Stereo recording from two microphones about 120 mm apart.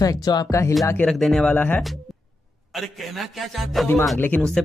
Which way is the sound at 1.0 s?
5° left (ahead or behind).